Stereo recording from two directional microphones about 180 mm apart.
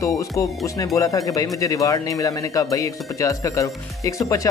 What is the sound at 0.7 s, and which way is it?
Speech, 20° left (ahead or behind).